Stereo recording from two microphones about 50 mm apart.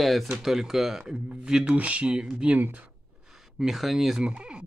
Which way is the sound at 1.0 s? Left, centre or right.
Centre.